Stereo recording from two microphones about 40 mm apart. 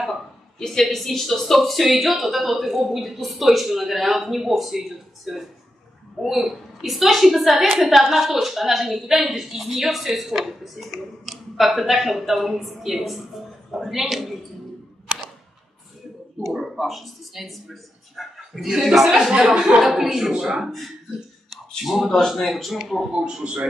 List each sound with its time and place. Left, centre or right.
0.6 s speech: centre
16.4 s a man's voice: centre
19.8 s speech: centre
21.5 s a sound: centre
22.5 s speech: centre
23.1 s a man's voice: right